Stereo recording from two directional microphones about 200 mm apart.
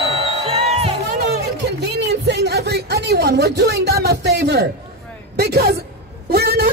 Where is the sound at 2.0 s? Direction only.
60° right (ahead or behind).